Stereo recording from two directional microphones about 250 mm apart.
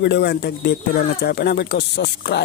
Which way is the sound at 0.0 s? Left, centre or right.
Left.